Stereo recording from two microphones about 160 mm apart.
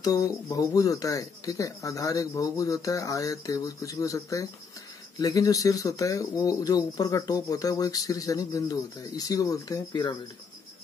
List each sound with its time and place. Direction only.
0.0 s speech: 20° left (ahead or behind)